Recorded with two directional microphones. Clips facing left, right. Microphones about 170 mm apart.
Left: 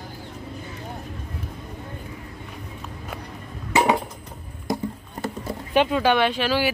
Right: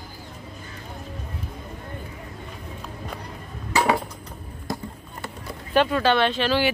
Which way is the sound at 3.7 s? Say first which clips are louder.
Left 2 dB; 20° left (ahead or behind).